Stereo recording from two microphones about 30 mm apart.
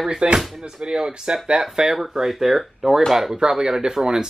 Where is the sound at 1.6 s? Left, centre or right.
Centre.